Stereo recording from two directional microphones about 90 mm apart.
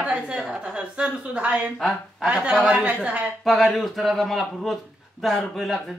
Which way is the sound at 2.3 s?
10° right (ahead or behind).